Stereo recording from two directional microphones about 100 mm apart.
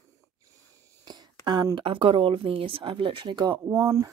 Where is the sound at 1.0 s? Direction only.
45° right (ahead or behind).